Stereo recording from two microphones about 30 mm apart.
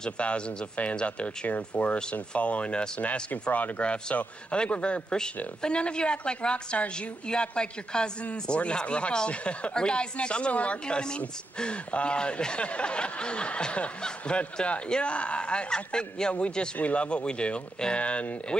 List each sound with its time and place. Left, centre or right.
0.2 s speech: left
3.0 s speech: left
3.8 s speech: left
9.8 s speech: left
11.5 s speech: left
16.7 s speech: left
18.5 s speech: left